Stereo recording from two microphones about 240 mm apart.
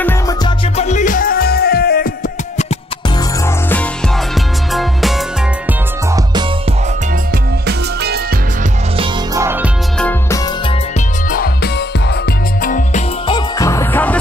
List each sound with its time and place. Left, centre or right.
0.7 s music: left
7.6 s music: right
8.9 s music: centre
9.9 s music: centre
12.6 s music: left
13.3 s music: centre